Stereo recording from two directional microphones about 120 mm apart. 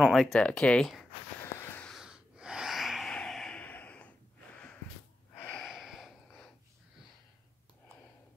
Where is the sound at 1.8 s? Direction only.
Centre (ahead or behind).